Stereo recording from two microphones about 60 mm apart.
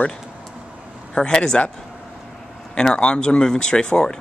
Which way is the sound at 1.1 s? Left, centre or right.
Centre.